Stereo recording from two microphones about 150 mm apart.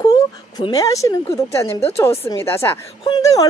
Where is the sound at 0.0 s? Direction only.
25° left (ahead or behind).